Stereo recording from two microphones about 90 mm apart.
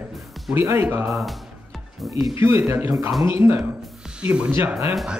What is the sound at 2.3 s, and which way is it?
Speech, 30° right (ahead or behind).